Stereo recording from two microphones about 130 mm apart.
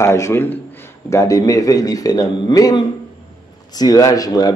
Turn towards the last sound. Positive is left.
turn(degrees=30)  # may be behind; listen again after turning